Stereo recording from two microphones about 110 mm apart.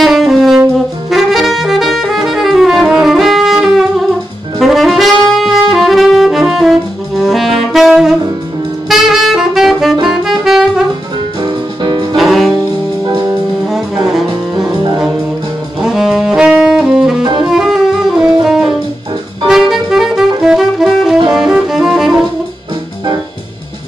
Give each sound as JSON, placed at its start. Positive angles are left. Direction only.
{"t": 0.0, "sound": "saxophone", "side_deg": 0}
{"t": 11.4, "sound": "music", "side_deg": -40}
{"t": 12.2, "sound": "music", "side_deg": 0}
{"t": 14.0, "sound": "music", "side_deg": -5}
{"t": 15.8, "sound": "saxophone", "side_deg": -5}
{"t": 17.4, "sound": "music", "side_deg": -5}